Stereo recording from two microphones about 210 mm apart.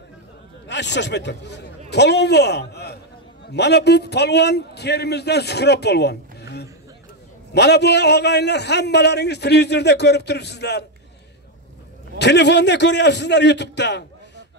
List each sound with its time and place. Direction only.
0.7 s a man's voice: 55° left (ahead or behind)
12.2 s a man's voice: 55° left (ahead or behind)